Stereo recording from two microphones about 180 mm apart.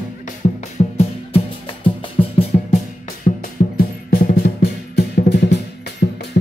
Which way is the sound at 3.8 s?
55° left (ahead or behind).